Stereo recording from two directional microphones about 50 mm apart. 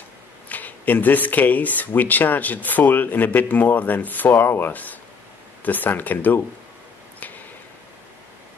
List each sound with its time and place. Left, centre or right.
0.5 s speech: left